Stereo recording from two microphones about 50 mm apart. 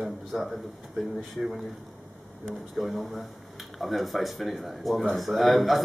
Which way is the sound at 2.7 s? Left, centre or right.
Centre.